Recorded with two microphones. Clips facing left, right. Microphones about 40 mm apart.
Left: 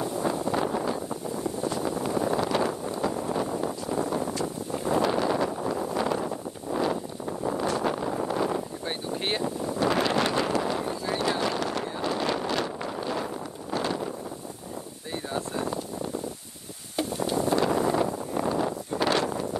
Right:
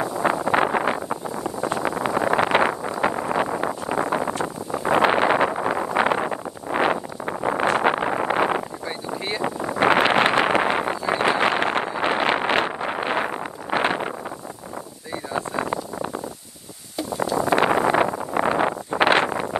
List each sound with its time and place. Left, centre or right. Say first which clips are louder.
0.0 s vehicle: right 5 dB; right
15.3 s a sound: right 5 dB; right
17.4 s wind noise: right 6 dB; right